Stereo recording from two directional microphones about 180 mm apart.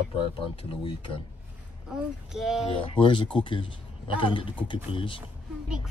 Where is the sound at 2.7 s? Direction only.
30° left (ahead or behind).